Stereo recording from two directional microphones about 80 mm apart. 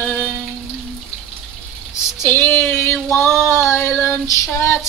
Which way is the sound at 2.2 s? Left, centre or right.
Left.